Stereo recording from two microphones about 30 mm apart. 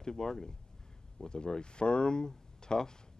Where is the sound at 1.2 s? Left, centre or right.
Left.